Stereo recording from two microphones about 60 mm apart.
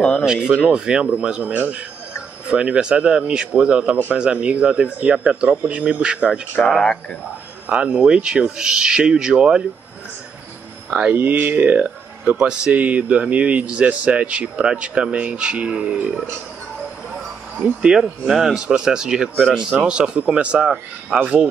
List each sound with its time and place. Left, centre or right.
0.2 s speech: centre
6.6 s speech: centre
7.6 s speech: right
10.9 s speech: right
11.8 s speech: centre
17.8 s speech: centre